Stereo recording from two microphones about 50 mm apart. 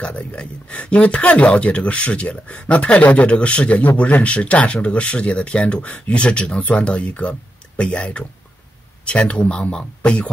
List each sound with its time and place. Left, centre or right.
0.0 s speech: left